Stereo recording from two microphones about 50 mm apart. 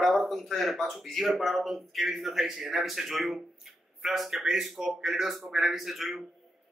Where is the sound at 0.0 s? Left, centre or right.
Centre.